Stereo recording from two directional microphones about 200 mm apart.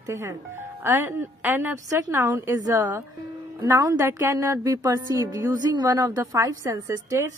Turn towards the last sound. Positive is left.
turn(degrees=-15)  # may be behind; listen again after turning